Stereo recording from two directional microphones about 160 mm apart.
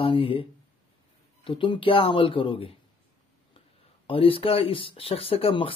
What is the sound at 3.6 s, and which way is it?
Speech, 35° left (ahead or behind).